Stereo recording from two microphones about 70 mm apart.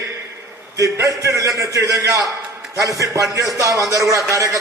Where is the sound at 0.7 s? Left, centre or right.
Right.